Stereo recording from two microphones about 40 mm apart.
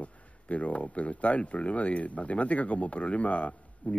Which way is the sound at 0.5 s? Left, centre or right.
Left.